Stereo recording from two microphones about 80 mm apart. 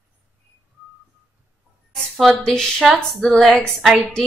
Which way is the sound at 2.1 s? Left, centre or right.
Centre.